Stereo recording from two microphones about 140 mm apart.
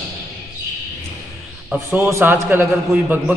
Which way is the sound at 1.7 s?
20° right (ahead or behind).